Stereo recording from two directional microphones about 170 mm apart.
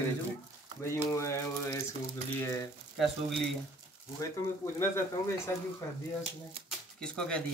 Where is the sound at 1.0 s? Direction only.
20° left (ahead or behind).